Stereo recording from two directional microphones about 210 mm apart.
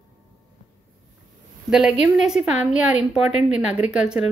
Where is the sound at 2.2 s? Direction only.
5° right (ahead or behind).